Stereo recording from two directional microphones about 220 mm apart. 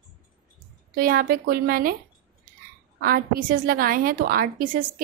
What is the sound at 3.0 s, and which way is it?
A woman's voice, 40° right (ahead or behind).